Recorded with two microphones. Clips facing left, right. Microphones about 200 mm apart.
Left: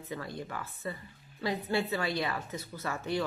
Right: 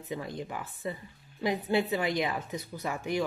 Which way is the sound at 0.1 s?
20° right (ahead or behind).